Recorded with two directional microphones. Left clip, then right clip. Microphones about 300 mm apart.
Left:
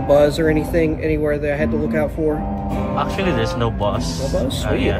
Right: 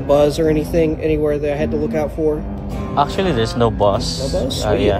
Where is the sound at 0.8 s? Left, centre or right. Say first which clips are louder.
Right 2 dB; right.